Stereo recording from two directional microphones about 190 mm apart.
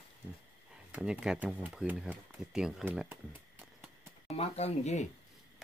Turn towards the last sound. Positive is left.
turn(degrees=35)  # may be behind; listen again after turning